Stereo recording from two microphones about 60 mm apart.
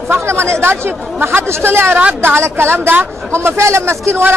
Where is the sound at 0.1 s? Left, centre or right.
Right.